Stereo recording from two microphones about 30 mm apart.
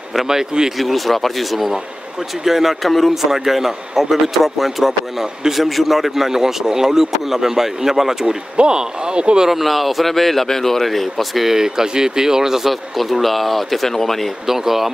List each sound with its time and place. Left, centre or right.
0.3 s speech: centre
0.7 s speech: centre
2.4 s speech: centre
2.8 s speech: centre
3.2 s speech: centre
8.5 s speech: right
9.5 s speech: centre
11.4 s speech: centre
12.9 s speech: centre
14.5 s speech: centre